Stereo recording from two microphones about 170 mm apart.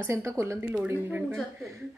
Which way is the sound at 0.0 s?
15° right (ahead or behind).